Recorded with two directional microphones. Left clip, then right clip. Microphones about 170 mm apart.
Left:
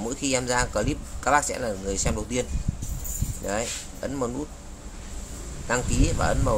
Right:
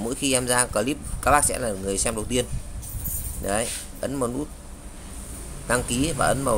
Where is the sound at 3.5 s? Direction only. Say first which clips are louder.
Right 2 dB; 15° right (ahead or behind).